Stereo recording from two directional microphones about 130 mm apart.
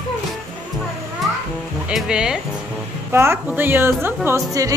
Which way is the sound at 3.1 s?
20° right (ahead or behind).